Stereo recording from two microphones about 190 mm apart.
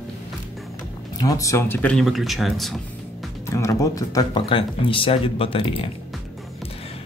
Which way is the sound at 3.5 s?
15° left (ahead or behind).